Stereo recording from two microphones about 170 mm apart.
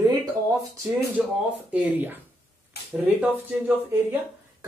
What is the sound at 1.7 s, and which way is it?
Speech, 10° right (ahead or behind).